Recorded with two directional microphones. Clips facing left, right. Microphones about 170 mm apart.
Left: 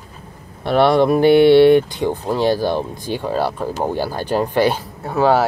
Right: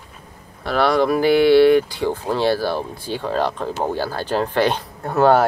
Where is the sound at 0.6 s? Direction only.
25° left (ahead or behind); by 5.4 s centre (ahead or behind).